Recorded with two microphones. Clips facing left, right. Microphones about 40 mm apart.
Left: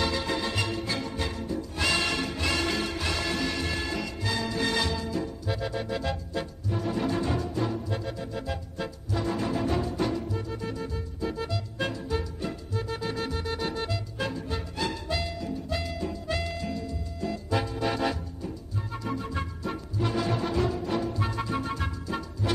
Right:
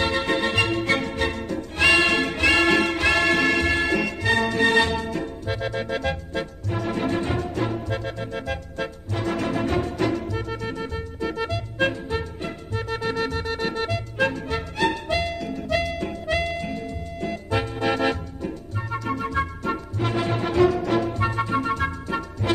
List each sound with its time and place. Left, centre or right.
0.0 s music: right
11.5 s music: right
20.6 s music: right
21.2 s music: right